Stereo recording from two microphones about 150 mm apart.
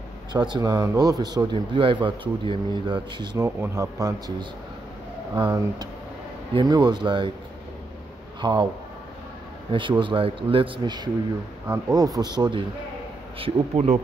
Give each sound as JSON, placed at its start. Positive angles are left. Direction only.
{"t": 0.3, "sound": "a man's voice", "side_deg": -30}
{"t": 3.4, "sound": "speech", "side_deg": -20}
{"t": 5.3, "sound": "a man's voice", "side_deg": -25}
{"t": 8.4, "sound": "speech", "side_deg": -30}
{"t": 9.7, "sound": "a man's voice", "side_deg": -35}
{"t": 11.6, "sound": "speech", "side_deg": -20}
{"t": 13.4, "sound": "speech", "side_deg": -45}